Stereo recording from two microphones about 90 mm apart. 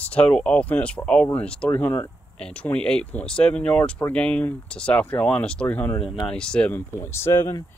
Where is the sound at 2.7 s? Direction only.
10° left (ahead or behind).